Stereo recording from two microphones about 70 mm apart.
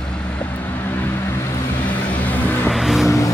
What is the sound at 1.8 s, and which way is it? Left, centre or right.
Vehicle, left.